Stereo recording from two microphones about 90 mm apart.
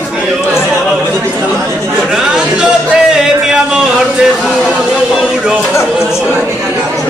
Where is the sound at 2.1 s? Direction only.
5° right (ahead or behind).